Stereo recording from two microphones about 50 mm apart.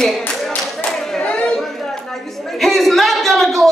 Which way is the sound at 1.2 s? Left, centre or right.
Left.